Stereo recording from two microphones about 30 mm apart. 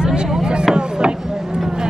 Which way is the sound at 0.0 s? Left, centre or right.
Right.